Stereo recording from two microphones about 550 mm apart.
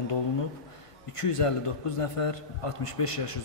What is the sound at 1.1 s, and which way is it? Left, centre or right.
A man's voice, left.